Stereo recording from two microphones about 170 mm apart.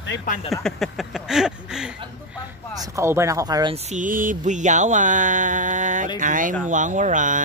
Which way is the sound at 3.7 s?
45° right (ahead or behind).